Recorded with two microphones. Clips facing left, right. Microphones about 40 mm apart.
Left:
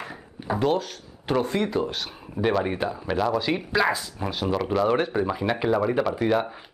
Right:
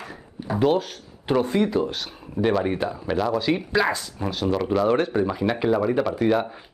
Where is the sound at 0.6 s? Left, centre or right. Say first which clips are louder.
Right 4 dB; centre.